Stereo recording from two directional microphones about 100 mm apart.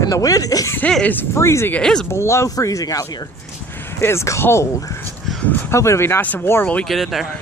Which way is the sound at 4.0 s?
25° left (ahead or behind).